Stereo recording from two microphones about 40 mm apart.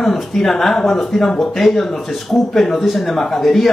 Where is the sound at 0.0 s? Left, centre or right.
Centre.